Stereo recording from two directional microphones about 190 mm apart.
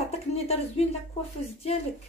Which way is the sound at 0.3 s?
35° left (ahead or behind).